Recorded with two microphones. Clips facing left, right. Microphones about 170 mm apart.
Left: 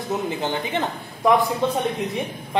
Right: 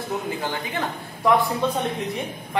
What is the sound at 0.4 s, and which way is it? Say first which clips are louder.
Speech: left 3 dB; 25° left (ahead or behind).